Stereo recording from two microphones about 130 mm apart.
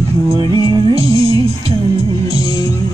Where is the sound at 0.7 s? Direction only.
45° right (ahead or behind).